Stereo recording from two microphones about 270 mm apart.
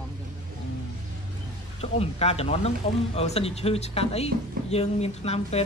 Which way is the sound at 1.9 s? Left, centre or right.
Left.